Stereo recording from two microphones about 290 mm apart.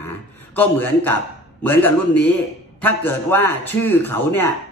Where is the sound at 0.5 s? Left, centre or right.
Centre.